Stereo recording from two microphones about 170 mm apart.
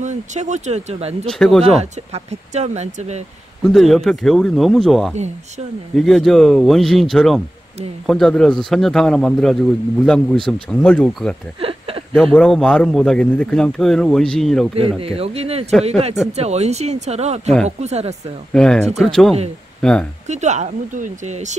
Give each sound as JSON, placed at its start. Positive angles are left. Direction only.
{"t": 0.0, "sound": "speech", "side_deg": -45}
{"t": 1.3, "sound": "a man's voice", "side_deg": 5}
{"t": 1.6, "sound": "speech", "side_deg": -40}
{"t": 3.6, "sound": "a man's voice", "side_deg": 0}
{"t": 11.6, "sound": "a sound", "side_deg": -35}
{"t": 12.2, "sound": "a man's voice", "side_deg": 5}
{"t": 14.8, "sound": "speech", "side_deg": -35}
{"t": 18.5, "sound": "a man's voice", "side_deg": 5}
{"t": 20.2, "sound": "speech", "side_deg": -45}